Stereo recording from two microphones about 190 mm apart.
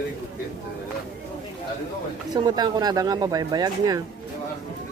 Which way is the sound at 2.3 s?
20° right (ahead or behind).